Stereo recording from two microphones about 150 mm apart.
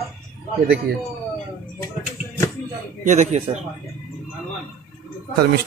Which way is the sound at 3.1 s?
50° right (ahead or behind).